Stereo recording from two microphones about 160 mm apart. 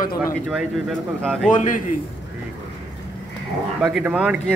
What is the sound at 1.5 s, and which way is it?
Speech, 55° left (ahead or behind).